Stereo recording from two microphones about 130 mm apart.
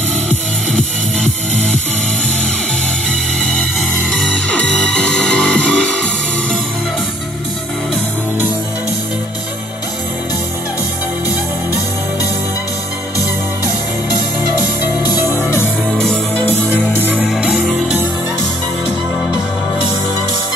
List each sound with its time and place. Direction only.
3.1 s music: 5° left (ahead or behind)
15.3 s music: 20° left (ahead or behind)
15.9 s music: 5° left (ahead or behind)
17.2 s music: 5° right (ahead or behind)